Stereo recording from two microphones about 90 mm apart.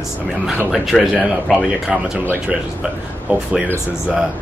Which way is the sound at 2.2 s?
25° right (ahead or behind).